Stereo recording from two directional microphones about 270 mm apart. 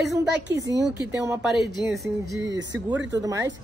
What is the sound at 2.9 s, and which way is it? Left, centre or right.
Speech, centre.